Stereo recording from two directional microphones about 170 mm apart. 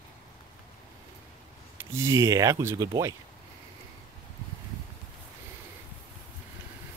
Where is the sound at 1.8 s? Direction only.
15° right (ahead or behind).